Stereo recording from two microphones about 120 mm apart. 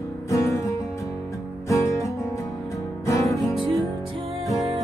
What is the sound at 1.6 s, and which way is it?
Music, 25° left (ahead or behind).